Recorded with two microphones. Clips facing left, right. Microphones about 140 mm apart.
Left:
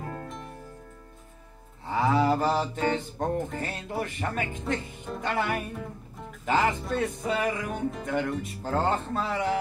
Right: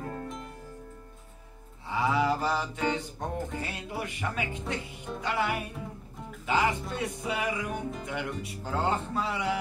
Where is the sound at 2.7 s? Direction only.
50° left (ahead or behind).